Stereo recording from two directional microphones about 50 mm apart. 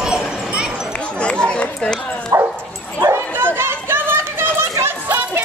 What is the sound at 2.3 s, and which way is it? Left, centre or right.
Bow-wow, right.